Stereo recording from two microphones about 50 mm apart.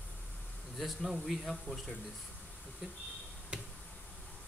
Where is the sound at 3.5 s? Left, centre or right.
Centre.